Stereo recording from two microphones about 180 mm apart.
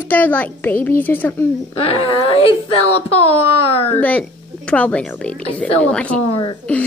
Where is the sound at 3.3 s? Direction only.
35° left (ahead or behind).